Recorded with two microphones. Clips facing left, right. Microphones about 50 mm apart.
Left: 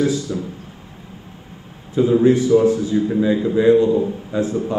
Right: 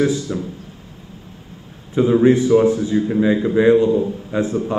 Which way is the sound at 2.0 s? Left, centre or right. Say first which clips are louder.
Right 1 dB; right.